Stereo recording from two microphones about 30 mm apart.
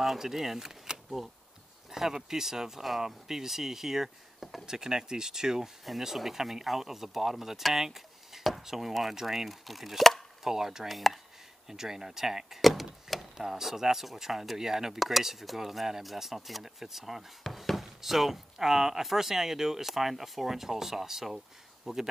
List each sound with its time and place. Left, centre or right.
0.0 s speech: centre
4.6 s speech: right
5.9 s speech: centre
7.8 s a sound: centre
8.6 s speech: centre
10.4 s speech: centre
10.9 s speech: centre
11.7 s speech: centre
12.6 s door: centre
13.4 s speech: centre
15.0 s speech: centre
17.4 s speech: centre